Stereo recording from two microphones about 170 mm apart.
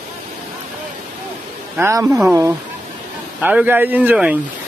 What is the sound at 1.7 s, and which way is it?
Speech, 15° right (ahead or behind).